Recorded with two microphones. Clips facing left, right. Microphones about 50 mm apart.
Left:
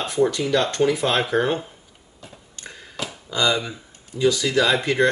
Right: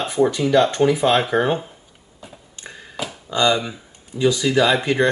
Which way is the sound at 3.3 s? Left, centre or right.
Centre.